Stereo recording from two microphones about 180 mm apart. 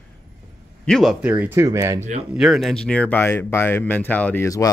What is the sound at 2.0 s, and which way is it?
Speech, 40° right (ahead or behind).